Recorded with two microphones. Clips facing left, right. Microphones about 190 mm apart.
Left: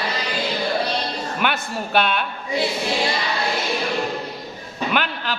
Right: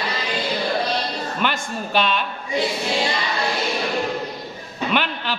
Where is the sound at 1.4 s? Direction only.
55° left (ahead or behind).